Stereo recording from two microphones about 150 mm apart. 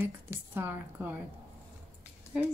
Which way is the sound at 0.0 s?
15° right (ahead or behind).